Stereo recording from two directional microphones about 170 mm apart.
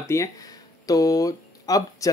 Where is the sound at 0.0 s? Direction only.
15° left (ahead or behind).